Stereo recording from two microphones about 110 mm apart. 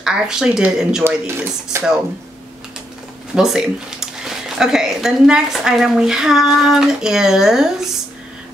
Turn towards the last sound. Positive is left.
turn(degrees=-5)  # may be behind; listen again after turning